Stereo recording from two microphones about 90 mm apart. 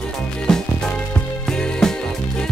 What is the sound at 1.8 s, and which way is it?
Music, 5° left (ahead or behind).